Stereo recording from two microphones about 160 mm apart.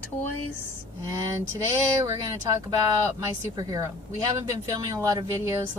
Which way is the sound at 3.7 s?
20° right (ahead or behind).